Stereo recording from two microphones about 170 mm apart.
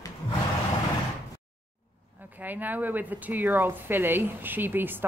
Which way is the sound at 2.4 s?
10° right (ahead or behind).